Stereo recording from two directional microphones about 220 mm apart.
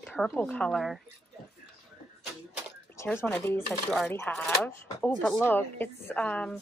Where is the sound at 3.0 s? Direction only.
10° left (ahead or behind).